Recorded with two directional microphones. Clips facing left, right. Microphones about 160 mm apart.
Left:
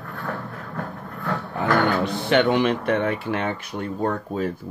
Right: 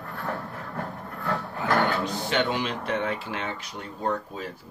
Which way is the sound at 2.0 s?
60° left (ahead or behind).